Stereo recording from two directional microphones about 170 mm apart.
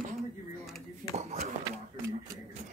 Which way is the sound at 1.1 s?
40° right (ahead or behind).